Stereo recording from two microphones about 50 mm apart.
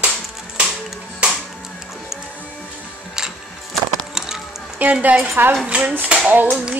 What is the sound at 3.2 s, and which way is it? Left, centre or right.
Printer, centre.